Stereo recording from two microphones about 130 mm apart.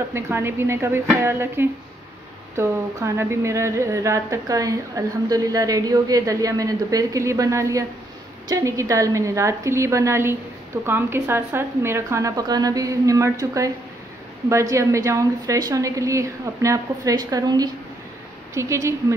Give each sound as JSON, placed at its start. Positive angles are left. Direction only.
{"t": 0.1, "sound": "speech", "side_deg": -20}